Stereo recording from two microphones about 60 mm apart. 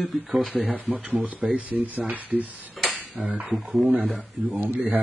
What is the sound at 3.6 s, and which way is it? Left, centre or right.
Speech, centre.